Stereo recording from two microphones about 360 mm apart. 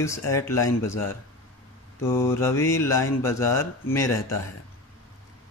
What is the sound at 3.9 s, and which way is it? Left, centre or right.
Speech, centre.